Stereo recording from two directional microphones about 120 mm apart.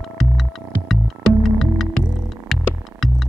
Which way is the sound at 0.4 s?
Centre (ahead or behind).